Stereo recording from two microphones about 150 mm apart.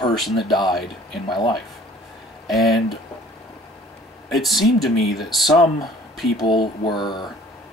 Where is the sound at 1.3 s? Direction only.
30° left (ahead or behind).